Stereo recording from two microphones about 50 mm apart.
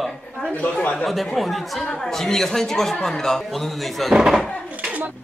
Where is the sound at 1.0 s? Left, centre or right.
Centre.